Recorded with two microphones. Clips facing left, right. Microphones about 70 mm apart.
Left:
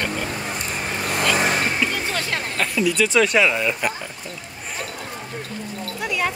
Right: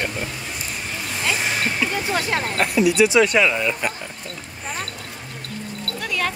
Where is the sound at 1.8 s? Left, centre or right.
Centre.